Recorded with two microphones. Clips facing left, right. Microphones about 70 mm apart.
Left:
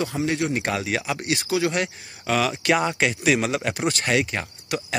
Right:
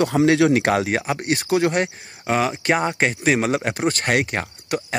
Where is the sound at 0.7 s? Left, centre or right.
Right.